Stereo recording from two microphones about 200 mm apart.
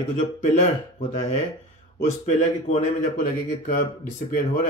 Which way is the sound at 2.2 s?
35° left (ahead or behind).